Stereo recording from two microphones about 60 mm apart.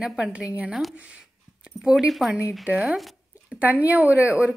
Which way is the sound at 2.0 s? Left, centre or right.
Centre.